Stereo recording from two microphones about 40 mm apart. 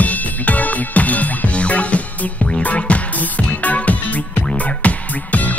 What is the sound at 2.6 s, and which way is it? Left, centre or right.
Music, left.